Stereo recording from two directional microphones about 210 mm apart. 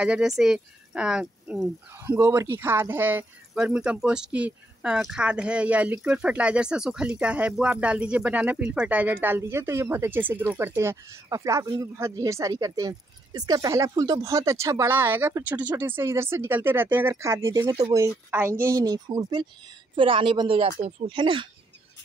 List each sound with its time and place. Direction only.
0.0 s a woman's voice: 5° right (ahead or behind); by 21.5 s 25° right (ahead or behind)